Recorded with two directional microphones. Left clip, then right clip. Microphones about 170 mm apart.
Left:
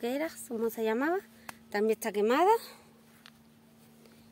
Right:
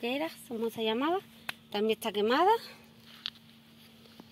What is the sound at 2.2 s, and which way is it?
Speech, 15° left (ahead or behind).